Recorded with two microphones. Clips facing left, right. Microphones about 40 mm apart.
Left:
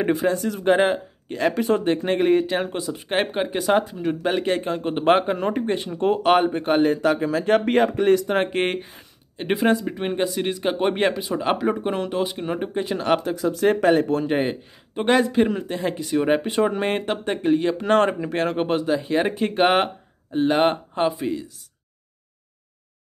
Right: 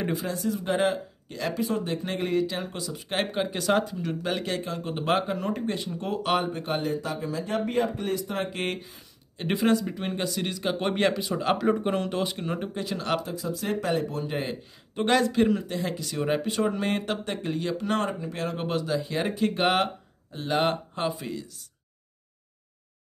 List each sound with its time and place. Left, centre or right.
0.0 s speech: left
1.5 s speech: left
2.0 s speech: left
7.0 s speech: left
9.4 s speech: left
12.4 s speech: left
13.2 s speech: left
14.5 s speech: left
17.7 s speech: left
18.7 s speech: left